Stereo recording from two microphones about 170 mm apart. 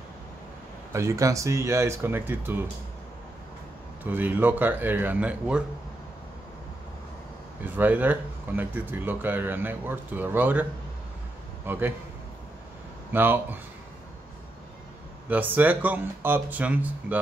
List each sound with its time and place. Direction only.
0.9 s speech: 15° right (ahead or behind)
4.0 s speech: 10° right (ahead or behind)
7.6 s a man's voice: 10° right (ahead or behind)
13.1 s speech: 10° right (ahead or behind)
15.2 s speech: 10° right (ahead or behind)